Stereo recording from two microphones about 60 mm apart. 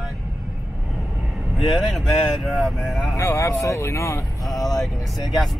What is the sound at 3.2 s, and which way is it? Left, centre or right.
Speech, left.